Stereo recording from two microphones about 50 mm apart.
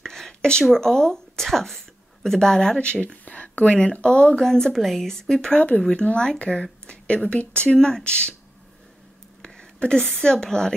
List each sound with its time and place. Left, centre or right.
0.0 s a sound: centre
0.7 s speech: centre
2.8 s a woman's voice: left
5.5 s speech: left
5.8 s speech: centre
9.4 s a sound: centre
10.2 s speech: centre